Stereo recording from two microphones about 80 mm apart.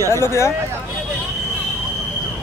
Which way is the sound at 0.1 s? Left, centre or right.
Left.